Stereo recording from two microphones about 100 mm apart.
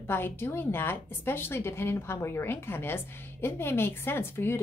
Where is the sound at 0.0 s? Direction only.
25° left (ahead or behind).